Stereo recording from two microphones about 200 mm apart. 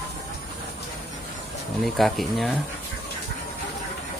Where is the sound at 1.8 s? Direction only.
Centre (ahead or behind).